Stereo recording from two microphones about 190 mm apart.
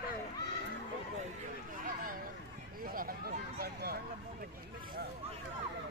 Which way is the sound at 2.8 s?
50° right (ahead or behind).